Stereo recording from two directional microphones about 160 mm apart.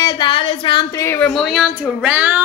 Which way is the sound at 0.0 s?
25° left (ahead or behind).